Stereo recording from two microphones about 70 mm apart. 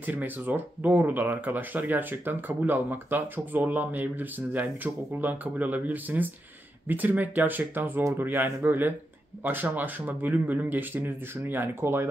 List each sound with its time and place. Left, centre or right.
0.0 s speech: right